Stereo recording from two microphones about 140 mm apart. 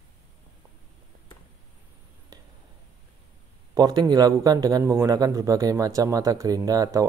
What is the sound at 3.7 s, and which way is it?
A man's voice, 30° right (ahead or behind).